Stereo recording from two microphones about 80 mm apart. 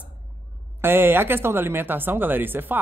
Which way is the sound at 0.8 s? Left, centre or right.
Right.